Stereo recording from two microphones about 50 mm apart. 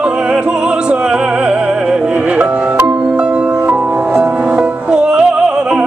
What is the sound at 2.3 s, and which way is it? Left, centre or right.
Music, right.